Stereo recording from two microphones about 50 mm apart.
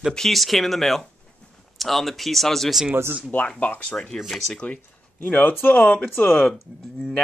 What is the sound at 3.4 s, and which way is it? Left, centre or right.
Speech, centre.